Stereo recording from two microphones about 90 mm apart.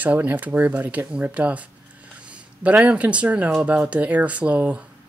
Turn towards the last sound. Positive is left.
turn(degrees=-15)  # may be behind; listen again after turning